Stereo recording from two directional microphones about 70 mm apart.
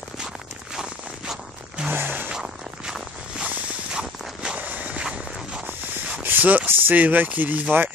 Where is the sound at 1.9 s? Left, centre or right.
Right.